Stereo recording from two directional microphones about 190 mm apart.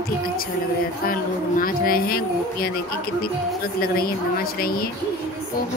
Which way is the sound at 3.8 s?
50° left (ahead or behind).